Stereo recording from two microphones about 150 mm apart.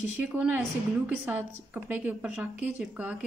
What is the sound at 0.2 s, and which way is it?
A woman's voice, 10° right (ahead or behind).